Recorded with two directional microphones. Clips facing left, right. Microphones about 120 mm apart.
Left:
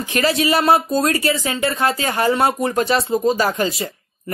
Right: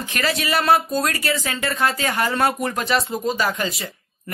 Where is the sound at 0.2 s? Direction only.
35° left (ahead or behind).